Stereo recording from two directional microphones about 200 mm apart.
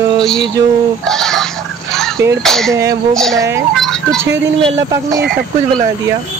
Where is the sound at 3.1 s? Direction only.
Centre (ahead or behind).